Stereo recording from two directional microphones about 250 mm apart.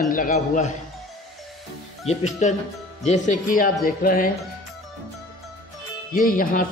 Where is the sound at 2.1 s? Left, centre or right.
Left.